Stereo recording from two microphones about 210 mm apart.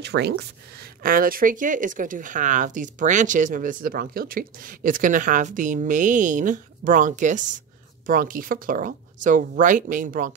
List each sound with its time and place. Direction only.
0.0 s speech: 55° right (ahead or behind)